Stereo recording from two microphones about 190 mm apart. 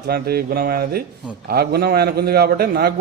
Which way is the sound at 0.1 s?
55° right (ahead or behind).